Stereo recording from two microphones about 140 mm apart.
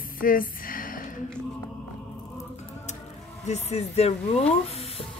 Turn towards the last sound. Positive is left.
turn(degrees=50)  # may be behind; listen again after turning